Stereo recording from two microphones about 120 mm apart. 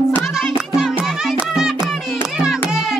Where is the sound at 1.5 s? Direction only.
5° right (ahead or behind).